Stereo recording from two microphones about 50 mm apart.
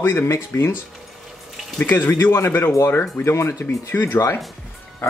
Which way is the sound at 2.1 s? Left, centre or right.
Left.